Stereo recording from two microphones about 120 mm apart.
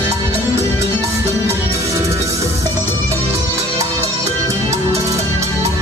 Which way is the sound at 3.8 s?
25° right (ahead or behind).